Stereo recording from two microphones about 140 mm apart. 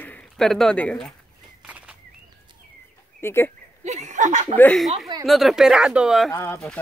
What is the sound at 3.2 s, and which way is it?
Speech, 15° left (ahead or behind).